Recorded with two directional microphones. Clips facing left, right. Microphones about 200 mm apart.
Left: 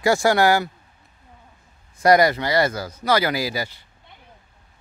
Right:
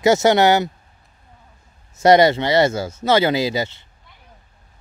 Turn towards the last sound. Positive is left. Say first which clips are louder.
# right 5 dB
turn(degrees=-25)  # may be behind; listen again after turning